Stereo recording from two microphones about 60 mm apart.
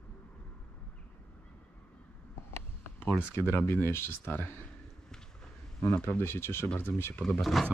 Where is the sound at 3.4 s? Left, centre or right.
Left.